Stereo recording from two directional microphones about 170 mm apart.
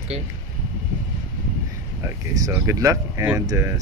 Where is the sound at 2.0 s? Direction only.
20° right (ahead or behind).